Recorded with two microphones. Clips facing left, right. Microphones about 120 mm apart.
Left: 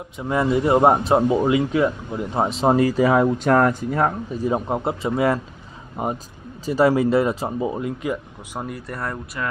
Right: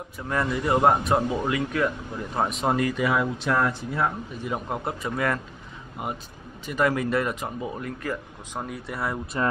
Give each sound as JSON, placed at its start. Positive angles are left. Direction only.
{"t": 0.2, "sound": "speech", "side_deg": 20}
{"t": 4.5, "sound": "speech", "side_deg": 30}
{"t": 6.6, "sound": "speech", "side_deg": 35}
{"t": 8.5, "sound": "speech", "side_deg": 0}